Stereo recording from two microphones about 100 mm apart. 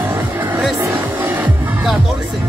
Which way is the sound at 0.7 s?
25° right (ahead or behind).